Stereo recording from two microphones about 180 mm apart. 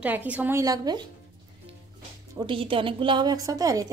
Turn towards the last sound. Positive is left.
turn(degrees=-20)  # may be behind; listen again after turning